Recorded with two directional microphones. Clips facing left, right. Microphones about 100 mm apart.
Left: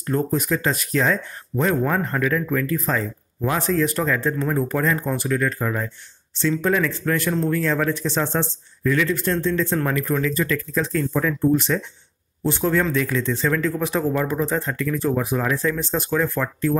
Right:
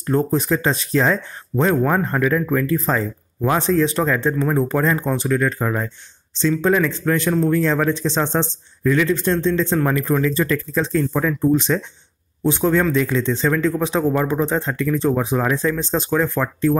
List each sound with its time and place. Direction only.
0.1 s speech: 30° right (ahead or behind)